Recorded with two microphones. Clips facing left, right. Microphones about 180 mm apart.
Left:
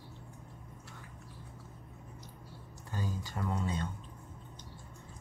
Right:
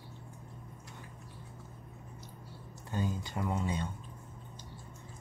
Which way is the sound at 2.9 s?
20° right (ahead or behind).